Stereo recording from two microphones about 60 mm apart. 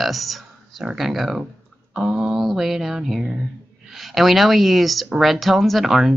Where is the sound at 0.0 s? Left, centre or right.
Centre.